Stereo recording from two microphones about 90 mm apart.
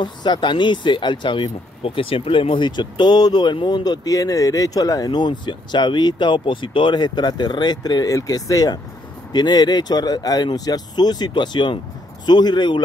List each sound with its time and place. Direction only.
0.0 s speech: 55° left (ahead or behind)